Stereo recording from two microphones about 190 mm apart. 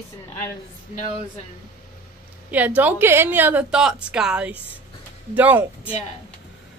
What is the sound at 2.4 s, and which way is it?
A woman's voice, 10° right (ahead or behind).